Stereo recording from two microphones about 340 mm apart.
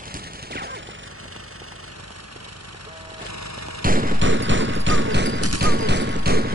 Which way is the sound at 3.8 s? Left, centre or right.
Right.